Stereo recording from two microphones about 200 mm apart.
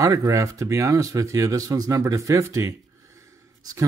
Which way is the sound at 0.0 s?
15° right (ahead or behind).